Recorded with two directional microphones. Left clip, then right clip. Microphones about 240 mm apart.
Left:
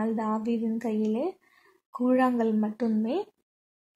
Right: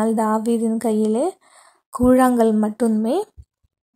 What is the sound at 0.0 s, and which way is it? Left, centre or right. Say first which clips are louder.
A woman's voice: right 10 dB; right.